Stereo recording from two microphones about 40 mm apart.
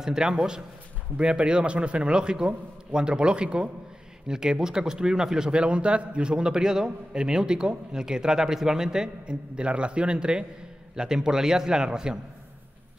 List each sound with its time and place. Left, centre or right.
0.0 s speech: centre
1.1 s a man's voice: right
5.5 s a man's voice: right